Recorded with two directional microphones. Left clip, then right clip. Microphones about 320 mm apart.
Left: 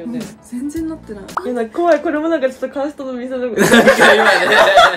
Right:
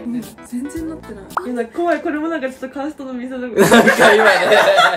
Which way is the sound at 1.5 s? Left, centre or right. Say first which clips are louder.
Left 5 dB; centre.